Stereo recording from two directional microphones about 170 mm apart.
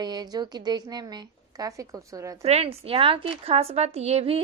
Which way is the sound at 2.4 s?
40° right (ahead or behind).